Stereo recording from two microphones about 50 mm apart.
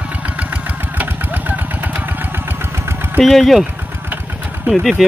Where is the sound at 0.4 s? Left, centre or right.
Right.